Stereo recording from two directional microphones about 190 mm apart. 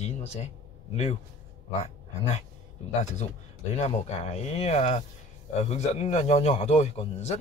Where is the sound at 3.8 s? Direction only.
35° left (ahead or behind).